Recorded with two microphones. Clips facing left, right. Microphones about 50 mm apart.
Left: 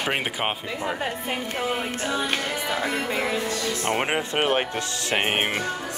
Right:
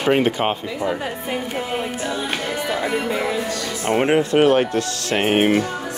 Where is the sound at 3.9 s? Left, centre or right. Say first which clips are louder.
Right 9 dB; centre.